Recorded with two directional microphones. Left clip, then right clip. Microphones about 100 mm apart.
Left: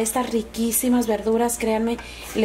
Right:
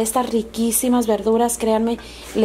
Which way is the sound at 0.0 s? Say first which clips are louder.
Right 3 dB; 40° right (ahead or behind).